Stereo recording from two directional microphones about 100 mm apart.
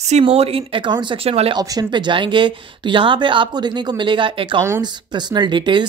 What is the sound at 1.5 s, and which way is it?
Speech, 40° right (ahead or behind).